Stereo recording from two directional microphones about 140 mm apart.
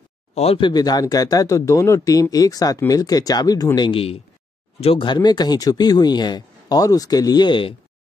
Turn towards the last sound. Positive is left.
turn(degrees=35)  # may be behind; listen again after turning